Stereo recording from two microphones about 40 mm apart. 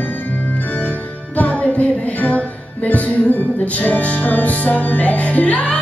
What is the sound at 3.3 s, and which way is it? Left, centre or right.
Music, left.